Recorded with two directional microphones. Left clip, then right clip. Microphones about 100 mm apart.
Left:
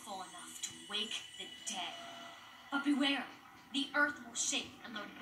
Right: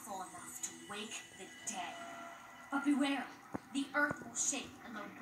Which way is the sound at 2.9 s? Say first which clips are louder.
Left 2 dB; 5° right (ahead or behind).